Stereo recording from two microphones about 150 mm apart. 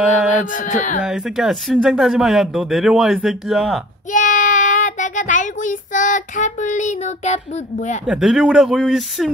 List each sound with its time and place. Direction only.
0.3 s music: 60° left (ahead or behind)
1.0 s speech: 5° right (ahead or behind)
4.1 s child singing: 60° left (ahead or behind)
8.1 s speech: 5° right (ahead or behind)